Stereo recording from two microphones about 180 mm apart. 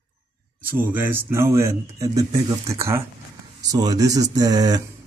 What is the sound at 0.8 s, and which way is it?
A man's voice, 10° right (ahead or behind).